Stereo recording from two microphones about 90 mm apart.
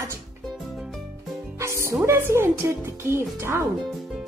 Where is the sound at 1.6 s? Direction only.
30° right (ahead or behind).